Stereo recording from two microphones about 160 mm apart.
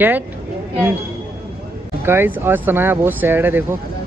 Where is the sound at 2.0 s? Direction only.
15° right (ahead or behind).